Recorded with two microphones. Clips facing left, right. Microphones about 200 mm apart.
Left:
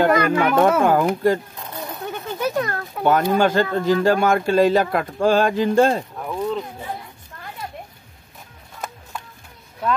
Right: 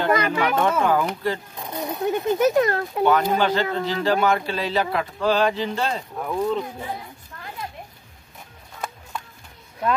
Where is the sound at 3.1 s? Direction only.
45° left (ahead or behind).